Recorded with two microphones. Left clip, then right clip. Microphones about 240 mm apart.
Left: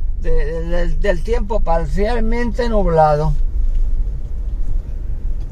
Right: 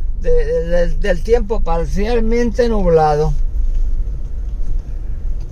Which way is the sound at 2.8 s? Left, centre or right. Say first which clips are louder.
Even; right.